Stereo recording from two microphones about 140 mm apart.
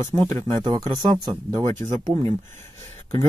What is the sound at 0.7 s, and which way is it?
Speech, 25° right (ahead or behind).